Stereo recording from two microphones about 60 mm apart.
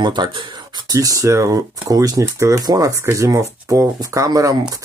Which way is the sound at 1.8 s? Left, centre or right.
Right.